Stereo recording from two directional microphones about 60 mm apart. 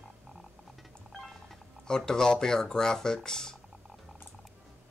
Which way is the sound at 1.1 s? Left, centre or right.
Centre.